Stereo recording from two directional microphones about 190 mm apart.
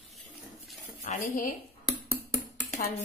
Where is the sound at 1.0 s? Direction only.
40° left (ahead or behind).